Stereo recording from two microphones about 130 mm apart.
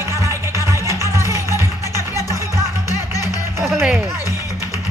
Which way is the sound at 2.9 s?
25° left (ahead or behind).